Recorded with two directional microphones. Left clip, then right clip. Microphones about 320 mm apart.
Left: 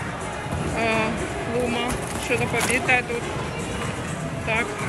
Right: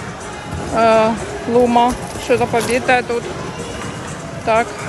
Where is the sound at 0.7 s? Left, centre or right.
Centre.